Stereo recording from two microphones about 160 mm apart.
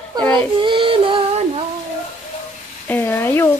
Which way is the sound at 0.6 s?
30° right (ahead or behind).